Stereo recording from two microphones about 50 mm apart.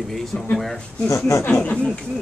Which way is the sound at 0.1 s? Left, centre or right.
Centre.